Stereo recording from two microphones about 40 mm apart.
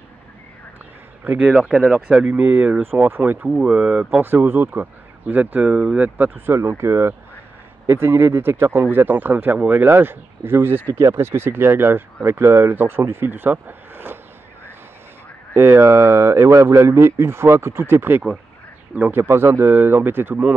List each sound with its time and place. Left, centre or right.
1.2 s speech: right
2.0 s speech: right
2.3 s speech: right
3.4 s speech: right
4.2 s speech: right
4.7 s speech: right
5.6 s speech: right
6.4 s speech: right
9.8 s speech: right
15.5 s speech: right
19.1 s speech: right
19.7 s speech: right